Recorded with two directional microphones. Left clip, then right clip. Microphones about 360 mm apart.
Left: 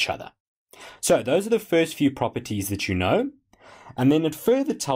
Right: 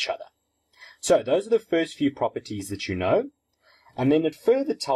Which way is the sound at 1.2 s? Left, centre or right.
Left.